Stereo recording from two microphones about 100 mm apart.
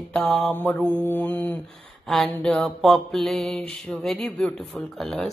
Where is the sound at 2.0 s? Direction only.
5° left (ahead or behind).